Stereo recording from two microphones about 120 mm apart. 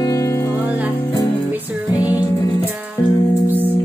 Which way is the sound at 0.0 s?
25° left (ahead or behind).